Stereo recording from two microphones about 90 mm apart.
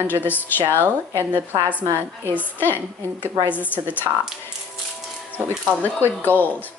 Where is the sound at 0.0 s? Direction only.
20° left (ahead or behind).